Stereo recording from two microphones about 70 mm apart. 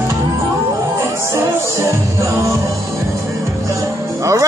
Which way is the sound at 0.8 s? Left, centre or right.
Right.